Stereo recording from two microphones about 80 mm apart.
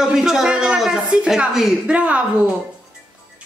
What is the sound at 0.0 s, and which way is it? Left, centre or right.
A woman's voice, centre.